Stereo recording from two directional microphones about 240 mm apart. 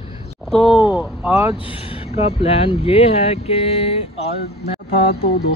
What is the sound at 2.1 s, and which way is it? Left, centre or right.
Speech, left.